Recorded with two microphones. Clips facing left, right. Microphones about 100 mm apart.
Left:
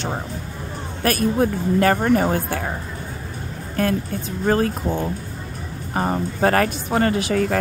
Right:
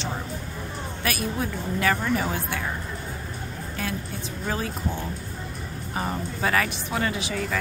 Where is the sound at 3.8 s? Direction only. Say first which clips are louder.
Left 11 dB; 50° left (ahead or behind).